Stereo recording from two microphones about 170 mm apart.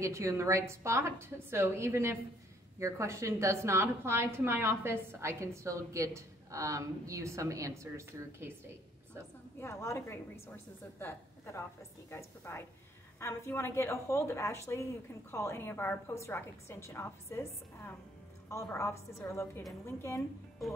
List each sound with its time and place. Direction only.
0.0 s a woman's voice: 20° right (ahead or behind)
9.6 s a woman's voice: 15° left (ahead or behind)